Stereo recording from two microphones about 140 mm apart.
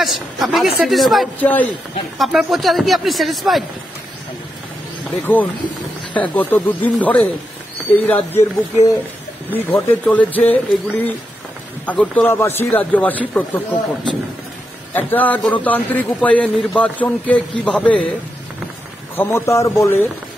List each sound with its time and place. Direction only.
0.0 s speech: centre (ahead or behind)
1.4 s a man's voice: 10° left (ahead or behind)
2.1 s speech: centre (ahead or behind)
5.2 s a man's voice: 10° left (ahead or behind)
9.5 s a man's voice: 15° left (ahead or behind)
15.0 s a man's voice: 15° left (ahead or behind)
19.1 s a man's voice: 15° left (ahead or behind)